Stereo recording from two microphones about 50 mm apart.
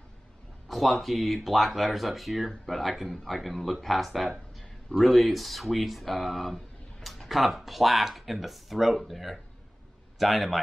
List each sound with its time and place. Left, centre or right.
0.7 s a man's voice: centre